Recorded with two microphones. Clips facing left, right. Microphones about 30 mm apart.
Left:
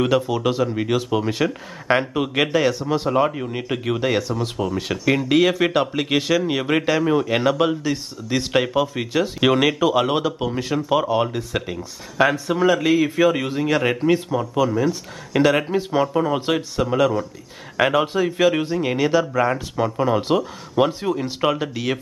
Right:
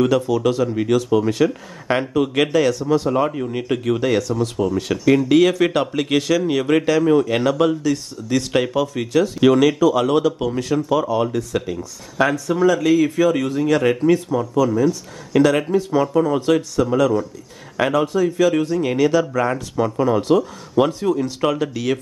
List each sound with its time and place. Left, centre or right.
0.0 s a man's voice: centre